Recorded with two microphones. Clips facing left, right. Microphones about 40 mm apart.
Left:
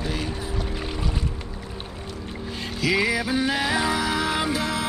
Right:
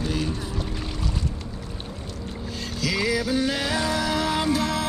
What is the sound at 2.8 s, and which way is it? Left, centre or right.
Music, centre.